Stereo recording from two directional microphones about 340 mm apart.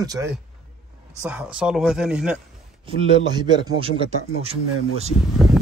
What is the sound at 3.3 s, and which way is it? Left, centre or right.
Speech, centre.